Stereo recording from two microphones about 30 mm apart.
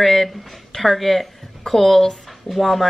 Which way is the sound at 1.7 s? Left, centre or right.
Left.